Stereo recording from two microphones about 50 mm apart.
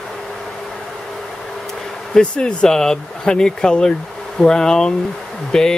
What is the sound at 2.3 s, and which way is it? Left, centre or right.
Speech, centre.